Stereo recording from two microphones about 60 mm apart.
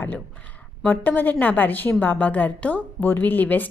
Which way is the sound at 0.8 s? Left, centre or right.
Left.